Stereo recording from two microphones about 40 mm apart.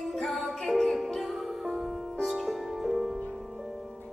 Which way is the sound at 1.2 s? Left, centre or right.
Centre.